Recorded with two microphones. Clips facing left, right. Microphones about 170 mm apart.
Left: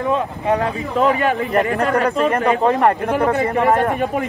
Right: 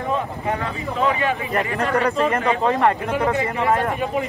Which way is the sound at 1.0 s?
45° left (ahead or behind).